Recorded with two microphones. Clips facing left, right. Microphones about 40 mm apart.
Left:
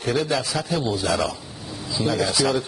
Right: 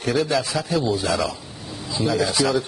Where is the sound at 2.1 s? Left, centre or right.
Centre.